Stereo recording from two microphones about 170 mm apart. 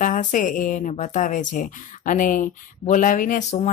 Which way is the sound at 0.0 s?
50° left (ahead or behind).